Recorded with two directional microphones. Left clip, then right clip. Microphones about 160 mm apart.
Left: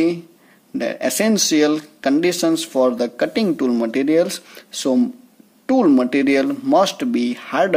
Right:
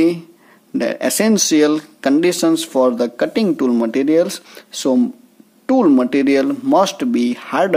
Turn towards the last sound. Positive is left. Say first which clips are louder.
# right 2 dB
turn(degrees=-20)  # may be behind; listen again after turning